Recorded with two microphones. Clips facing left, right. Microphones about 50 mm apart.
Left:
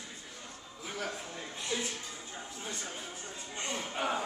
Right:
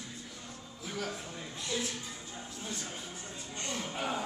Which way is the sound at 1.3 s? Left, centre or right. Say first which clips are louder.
Even; centre.